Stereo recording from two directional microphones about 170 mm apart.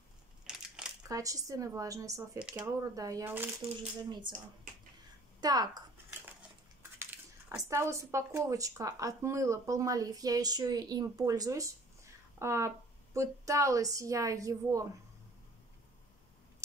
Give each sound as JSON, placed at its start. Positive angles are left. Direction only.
{"t": 0.5, "sound": "crushing", "side_deg": -5}
{"t": 1.0, "sound": "speech", "side_deg": -20}
{"t": 2.3, "sound": "speech", "side_deg": -5}
{"t": 2.6, "sound": "speech", "side_deg": -20}
{"t": 4.3, "sound": "speech", "side_deg": -25}